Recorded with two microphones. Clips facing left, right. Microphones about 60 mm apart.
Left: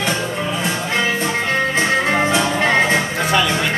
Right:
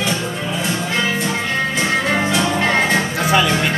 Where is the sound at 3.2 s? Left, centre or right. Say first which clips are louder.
Right 3 dB; centre.